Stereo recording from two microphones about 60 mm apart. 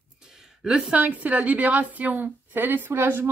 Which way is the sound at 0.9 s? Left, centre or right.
Right.